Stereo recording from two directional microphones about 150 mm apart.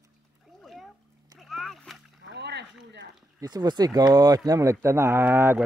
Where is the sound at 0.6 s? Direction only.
Centre (ahead or behind).